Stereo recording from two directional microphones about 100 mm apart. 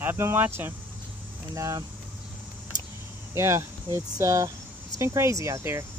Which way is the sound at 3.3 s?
25° right (ahead or behind).